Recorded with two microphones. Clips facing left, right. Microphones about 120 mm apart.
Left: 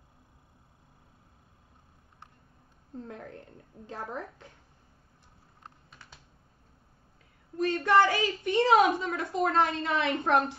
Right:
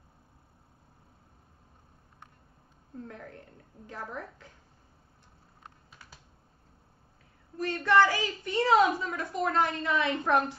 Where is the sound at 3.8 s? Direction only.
25° left (ahead or behind).